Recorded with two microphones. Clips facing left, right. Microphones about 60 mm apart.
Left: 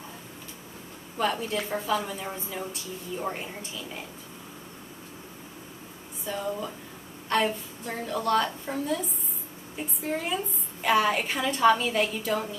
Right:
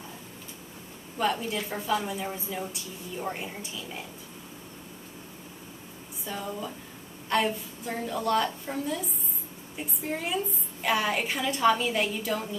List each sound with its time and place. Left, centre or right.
1.1 s a woman's voice: centre
6.3 s a woman's voice: centre